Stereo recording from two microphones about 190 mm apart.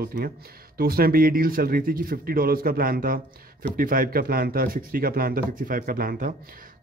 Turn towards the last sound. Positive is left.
turn(degrees=-45)  # may be behind; listen again after turning